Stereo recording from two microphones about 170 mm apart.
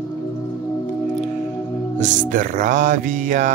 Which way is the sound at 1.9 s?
50° right (ahead or behind).